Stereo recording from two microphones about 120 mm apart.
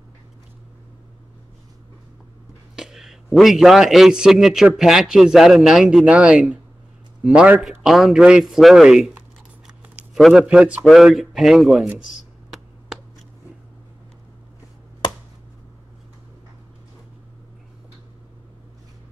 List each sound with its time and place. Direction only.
2.7 s a man's voice: 5° right (ahead or behind)
9.7 s a sound: 5° right (ahead or behind)
10.9 s a man's voice: centre (ahead or behind)
12.0 s computer keyboard: centre (ahead or behind)